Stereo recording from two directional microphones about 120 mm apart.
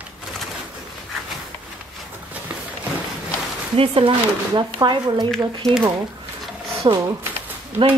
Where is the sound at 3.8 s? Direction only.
50° right (ahead or behind).